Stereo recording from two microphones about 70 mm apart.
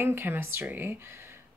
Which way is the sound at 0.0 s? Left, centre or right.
Right.